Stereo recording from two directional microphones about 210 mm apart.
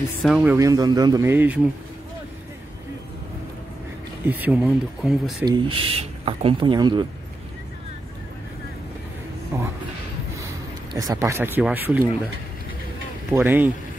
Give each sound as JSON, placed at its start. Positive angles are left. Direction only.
{"t": 0.2, "sound": "speech", "side_deg": -5}
{"t": 4.3, "sound": "speech", "side_deg": -5}
{"t": 5.4, "sound": "speech", "side_deg": -20}
{"t": 10.3, "sound": "speech", "side_deg": -15}
{"t": 13.3, "sound": "speech", "side_deg": -10}